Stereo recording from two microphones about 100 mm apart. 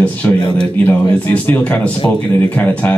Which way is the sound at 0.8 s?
15° left (ahead or behind).